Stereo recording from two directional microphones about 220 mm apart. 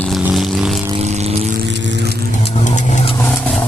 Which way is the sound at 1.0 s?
30° right (ahead or behind).